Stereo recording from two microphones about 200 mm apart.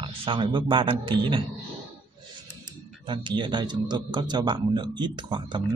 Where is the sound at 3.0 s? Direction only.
25° right (ahead or behind).